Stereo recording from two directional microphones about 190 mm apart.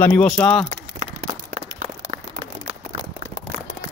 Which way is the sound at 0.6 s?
40° right (ahead or behind).